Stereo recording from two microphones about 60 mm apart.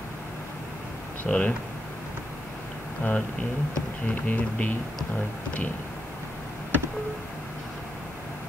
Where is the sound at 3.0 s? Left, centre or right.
Left.